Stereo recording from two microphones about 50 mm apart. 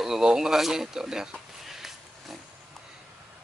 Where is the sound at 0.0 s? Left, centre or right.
Centre.